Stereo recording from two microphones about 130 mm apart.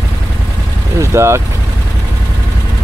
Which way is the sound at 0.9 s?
20° right (ahead or behind).